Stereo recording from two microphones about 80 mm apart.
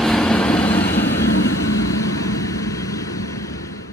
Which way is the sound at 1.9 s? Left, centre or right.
Left.